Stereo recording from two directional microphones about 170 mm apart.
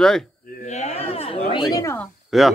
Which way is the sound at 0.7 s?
40° left (ahead or behind).